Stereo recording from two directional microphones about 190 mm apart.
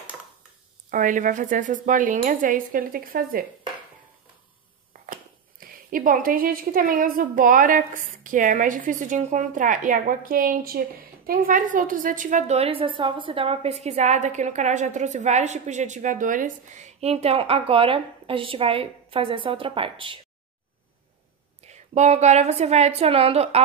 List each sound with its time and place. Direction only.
0.8 s speech: 45° right (ahead or behind)
5.0 s a woman's voice: 45° right (ahead or behind); by 20.2 s 25° right (ahead or behind)
21.6 s a woman's voice: 35° right (ahead or behind)